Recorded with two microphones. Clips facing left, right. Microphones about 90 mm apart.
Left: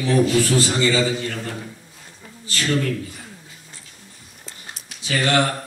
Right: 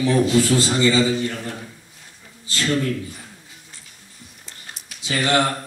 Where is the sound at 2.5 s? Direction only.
20° right (ahead or behind).